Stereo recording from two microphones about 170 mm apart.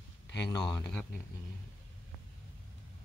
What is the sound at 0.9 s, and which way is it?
Speech, 5° left (ahead or behind).